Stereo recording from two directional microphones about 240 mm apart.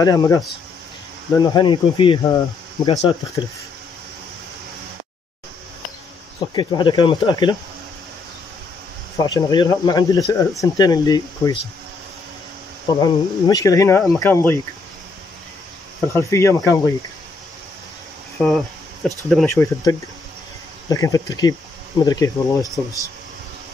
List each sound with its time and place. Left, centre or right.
0.0 s speech: centre
6.5 s speech: centre
9.2 s speech: centre
13.0 s speech: centre
16.1 s speech: centre
18.4 s speech: centre
19.4 s speech: centre